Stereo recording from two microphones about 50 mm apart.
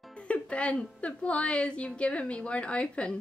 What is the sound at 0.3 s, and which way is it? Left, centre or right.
A woman's voice, left.